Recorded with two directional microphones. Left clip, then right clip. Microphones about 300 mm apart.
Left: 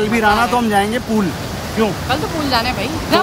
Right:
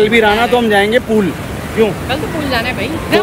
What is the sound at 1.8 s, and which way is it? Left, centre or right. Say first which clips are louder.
Speech: right 3 dB; centre.